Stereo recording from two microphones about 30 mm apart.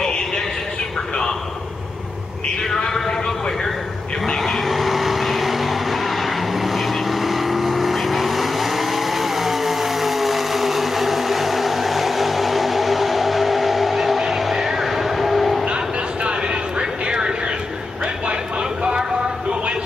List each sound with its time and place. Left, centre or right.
2.9 s vehicle: centre
4.4 s vehicle: centre
15.6 s vehicle: right